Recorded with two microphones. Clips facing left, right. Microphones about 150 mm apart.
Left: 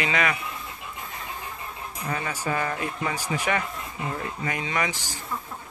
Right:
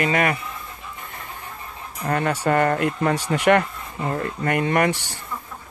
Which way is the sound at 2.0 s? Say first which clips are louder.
Right 8 dB; 60° right (ahead or behind).